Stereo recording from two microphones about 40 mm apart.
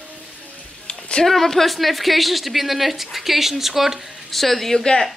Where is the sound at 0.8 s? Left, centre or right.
Left.